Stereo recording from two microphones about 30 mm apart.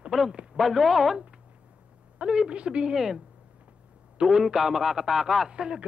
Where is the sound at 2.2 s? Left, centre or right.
Right.